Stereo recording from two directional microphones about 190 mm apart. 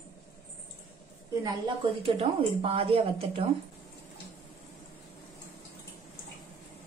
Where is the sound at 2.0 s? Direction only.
30° right (ahead or behind).